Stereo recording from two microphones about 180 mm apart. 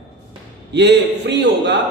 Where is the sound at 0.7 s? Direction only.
70° right (ahead or behind).